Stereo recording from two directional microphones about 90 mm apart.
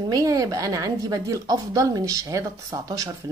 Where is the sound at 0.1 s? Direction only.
40° right (ahead or behind).